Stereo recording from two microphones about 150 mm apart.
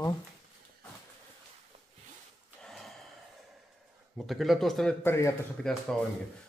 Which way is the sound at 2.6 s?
Centre (ahead or behind).